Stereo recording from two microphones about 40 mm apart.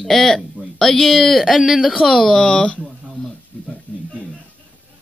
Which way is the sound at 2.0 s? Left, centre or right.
Centre.